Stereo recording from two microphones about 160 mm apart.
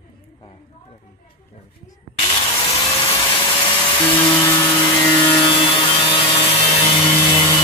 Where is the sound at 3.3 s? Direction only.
30° left (ahead or behind).